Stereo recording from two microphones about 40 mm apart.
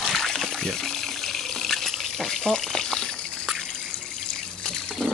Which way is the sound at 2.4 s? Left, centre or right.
Centre.